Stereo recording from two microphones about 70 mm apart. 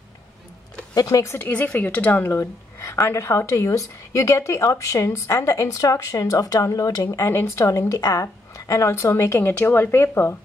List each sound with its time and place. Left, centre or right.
0.9 s a woman's voice: left
1.4 s speech: left
2.8 s a woman's voice: left
7.2 s a woman's voice: left